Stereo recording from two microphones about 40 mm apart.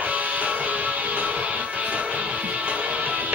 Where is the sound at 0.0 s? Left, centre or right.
Right.